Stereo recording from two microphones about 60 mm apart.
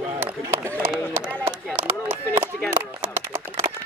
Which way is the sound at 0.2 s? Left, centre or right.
Right.